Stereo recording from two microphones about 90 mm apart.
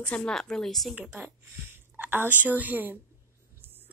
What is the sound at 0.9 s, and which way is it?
Speech, 10° right (ahead or behind).